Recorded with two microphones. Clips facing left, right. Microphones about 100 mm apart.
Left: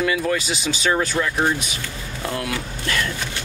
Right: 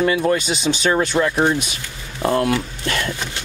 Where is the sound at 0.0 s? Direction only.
30° right (ahead or behind).